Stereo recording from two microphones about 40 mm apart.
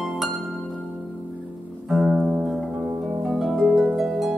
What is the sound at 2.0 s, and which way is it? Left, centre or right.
Music, right.